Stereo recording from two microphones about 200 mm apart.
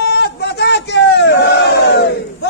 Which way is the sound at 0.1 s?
55° left (ahead or behind).